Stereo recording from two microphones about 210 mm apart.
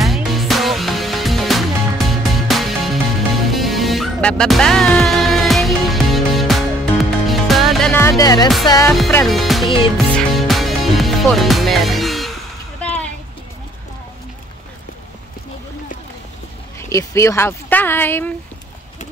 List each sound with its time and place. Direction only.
0.0 s music: centre (ahead or behind); by 8.5 s 15° left (ahead or behind)
8.6 s speech: 15° left (ahead or behind)
9.2 s music: centre (ahead or behind)
12.8 s a sound: 5° left (ahead or behind)
16.9 s speech: 15° left (ahead or behind)